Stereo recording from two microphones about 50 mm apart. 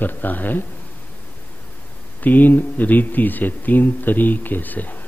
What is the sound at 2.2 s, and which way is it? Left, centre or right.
Speech, left.